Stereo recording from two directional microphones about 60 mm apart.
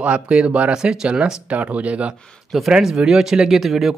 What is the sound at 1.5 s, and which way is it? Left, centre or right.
Speech, right.